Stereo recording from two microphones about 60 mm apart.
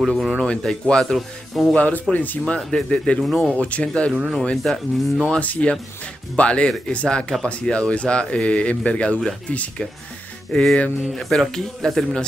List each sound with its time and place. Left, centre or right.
0.0 s speech: centre
1.1 s speech: centre
1.8 s speech: left
2.4 s speech: centre
3.2 s speech: centre
3.5 s speech: left
4.1 s speech: centre
4.6 s speech: centre
5.3 s speech: left
10.5 s speech: centre